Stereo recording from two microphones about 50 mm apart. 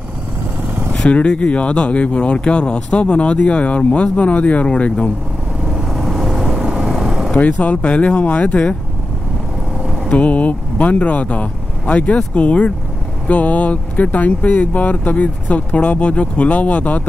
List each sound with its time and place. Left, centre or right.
1.0 s speech: left
5.7 s vehicle: centre
7.3 s speech: left
10.0 s speech: left